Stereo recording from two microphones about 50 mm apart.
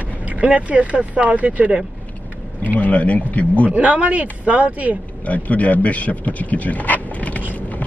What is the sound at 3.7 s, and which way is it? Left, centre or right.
Speech, right.